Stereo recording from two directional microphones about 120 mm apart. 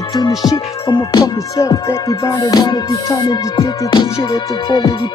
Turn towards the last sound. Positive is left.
turn(degrees=40)  # may be behind; listen again after turning